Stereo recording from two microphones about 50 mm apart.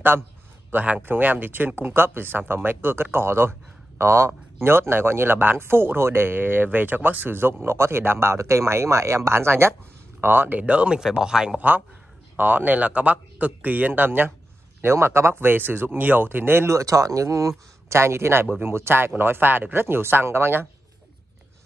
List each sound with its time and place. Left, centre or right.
0.7 s a man's voice: right
4.6 s speech: right
10.2 s speech: right
10.6 s speech: right
11.0 s speech: centre
12.4 s a man's voice: right
14.8 s speech: right
15.4 s speech: right
16.6 s speech: right